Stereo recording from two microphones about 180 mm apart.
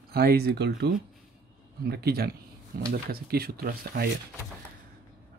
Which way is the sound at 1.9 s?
60° right (ahead or behind).